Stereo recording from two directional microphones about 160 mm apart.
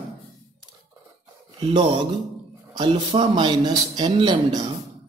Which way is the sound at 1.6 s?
30° right (ahead or behind).